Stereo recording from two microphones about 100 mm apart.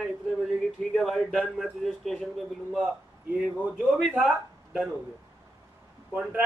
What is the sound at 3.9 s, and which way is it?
Speech, 5° right (ahead or behind).